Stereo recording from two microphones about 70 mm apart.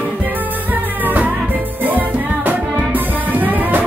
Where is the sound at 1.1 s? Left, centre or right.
Right.